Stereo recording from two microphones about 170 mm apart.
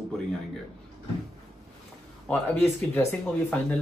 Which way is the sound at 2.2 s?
15° left (ahead or behind).